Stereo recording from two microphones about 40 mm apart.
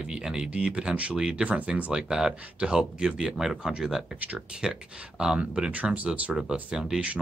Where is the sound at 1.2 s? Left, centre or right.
Right.